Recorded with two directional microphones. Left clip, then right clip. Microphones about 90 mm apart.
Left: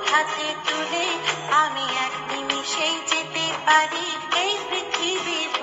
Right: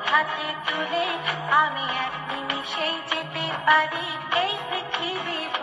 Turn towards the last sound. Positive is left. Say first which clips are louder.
# left 3 dB
turn(degrees=30)  # may be behind; listen again after turning